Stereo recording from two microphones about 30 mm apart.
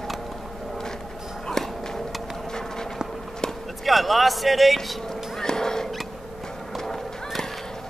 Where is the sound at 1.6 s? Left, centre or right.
Left.